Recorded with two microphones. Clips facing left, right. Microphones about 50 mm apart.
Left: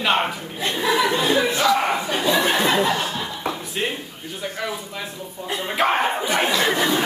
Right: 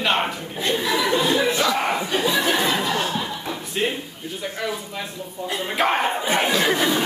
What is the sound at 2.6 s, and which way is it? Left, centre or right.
Laughter, left.